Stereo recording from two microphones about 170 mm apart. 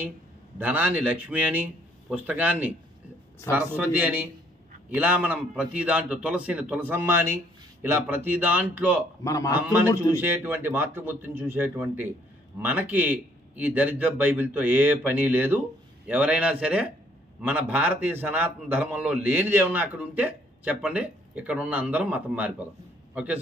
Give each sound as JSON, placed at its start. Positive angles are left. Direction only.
{"t": 0.6, "sound": "a man's voice", "side_deg": -10}
{"t": 9.2, "sound": "a man's voice", "side_deg": 20}
{"t": 9.5, "sound": "a man's voice", "side_deg": -10}